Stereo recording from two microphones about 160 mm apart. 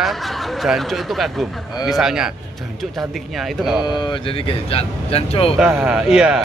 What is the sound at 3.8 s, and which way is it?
Speech, 30° left (ahead or behind).